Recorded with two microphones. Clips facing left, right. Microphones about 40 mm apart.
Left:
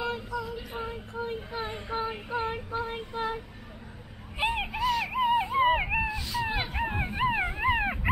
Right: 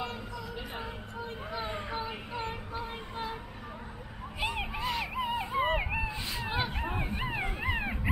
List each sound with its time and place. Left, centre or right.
1.2 s a sound: centre
2.0 s female singing: centre
2.9 s child singing: centre
4.4 s vehicle: left
4.7 s music: centre
5.0 s a sound: centre
6.4 s dog: centre